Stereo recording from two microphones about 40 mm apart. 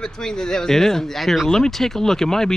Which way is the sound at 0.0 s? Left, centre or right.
Centre.